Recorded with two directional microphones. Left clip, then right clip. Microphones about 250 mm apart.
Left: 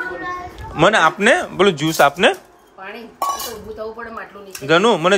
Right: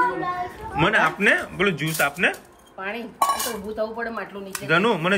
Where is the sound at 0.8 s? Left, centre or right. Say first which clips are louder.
Left 6 dB; centre.